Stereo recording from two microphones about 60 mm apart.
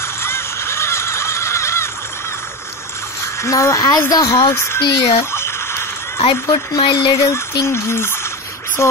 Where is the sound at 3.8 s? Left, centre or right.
Left.